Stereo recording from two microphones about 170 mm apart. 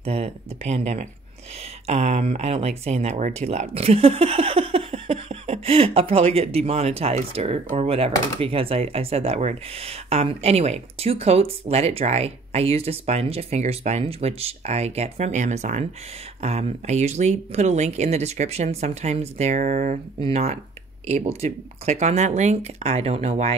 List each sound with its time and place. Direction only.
0.0 s speech: 35° right (ahead or behind)